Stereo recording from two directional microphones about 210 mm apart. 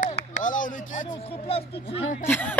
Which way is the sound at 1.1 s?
25° left (ahead or behind).